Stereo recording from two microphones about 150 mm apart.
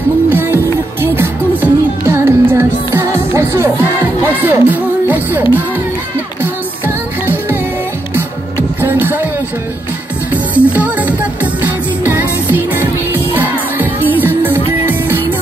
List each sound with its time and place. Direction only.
0.3 s music: 15° right (ahead or behind)
8.8 s music: 15° right (ahead or behind)
10.3 s music: 10° right (ahead or behind)